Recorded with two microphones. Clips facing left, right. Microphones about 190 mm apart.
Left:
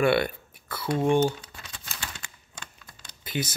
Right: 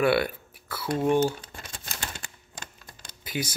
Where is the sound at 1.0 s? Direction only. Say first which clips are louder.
Even; 5° right (ahead or behind).